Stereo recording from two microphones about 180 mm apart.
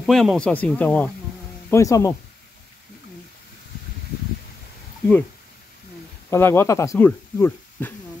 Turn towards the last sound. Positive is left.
turn(degrees=10)  # may be behind; listen again after turning